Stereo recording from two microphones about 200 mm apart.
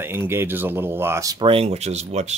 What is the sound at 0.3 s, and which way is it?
Speech, 10° right (ahead or behind).